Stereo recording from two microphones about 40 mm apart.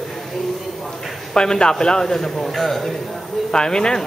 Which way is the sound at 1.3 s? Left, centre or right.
Centre.